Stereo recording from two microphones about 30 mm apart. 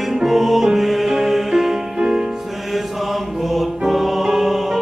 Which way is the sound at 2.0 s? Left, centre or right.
Right.